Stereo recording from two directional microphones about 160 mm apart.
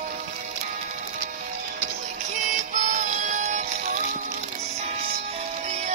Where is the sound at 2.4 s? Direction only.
50° right (ahead or behind).